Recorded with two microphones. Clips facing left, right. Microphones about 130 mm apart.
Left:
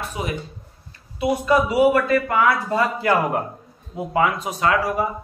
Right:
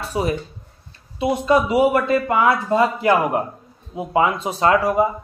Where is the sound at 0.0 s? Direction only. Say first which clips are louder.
Right 5 dB; 35° right (ahead or behind).